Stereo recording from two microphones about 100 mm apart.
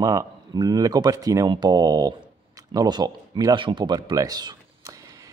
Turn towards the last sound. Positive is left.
turn(degrees=-40)  # may be behind; listen again after turning